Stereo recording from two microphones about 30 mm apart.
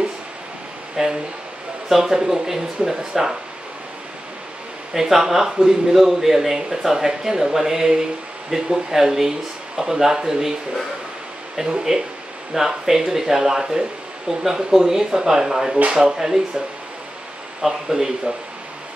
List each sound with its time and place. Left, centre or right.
1.0 s a man's voice: centre
4.9 s a man's voice: centre
11.6 s speech: right
12.5 s a man's voice: centre
17.6 s a man's voice: centre